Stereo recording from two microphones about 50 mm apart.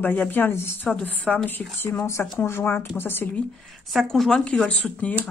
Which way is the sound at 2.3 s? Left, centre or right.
Left.